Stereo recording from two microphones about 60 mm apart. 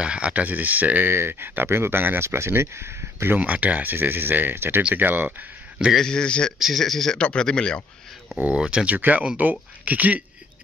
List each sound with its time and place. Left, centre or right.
0.0 s speech: centre; by 3.3 s right
3.3 s speech: right
5.9 s speech: centre
6.6 s speech: centre
7.2 s speech: centre
8.5 s speech: centre